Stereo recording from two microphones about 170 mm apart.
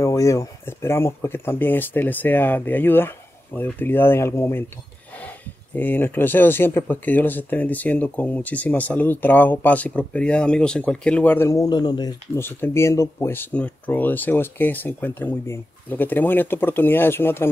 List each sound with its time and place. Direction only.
0.0 s speech: 20° left (ahead or behind)
5.8 s speech: 10° left (ahead or behind)
12.4 s speech: 15° left (ahead or behind)